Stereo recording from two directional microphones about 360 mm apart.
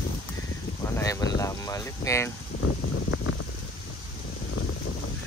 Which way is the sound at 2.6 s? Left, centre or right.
Left.